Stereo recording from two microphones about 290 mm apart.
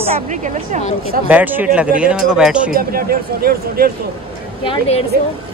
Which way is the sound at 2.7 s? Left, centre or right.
Right.